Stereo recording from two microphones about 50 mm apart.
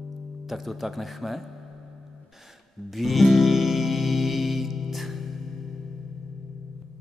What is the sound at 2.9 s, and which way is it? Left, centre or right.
Music, centre.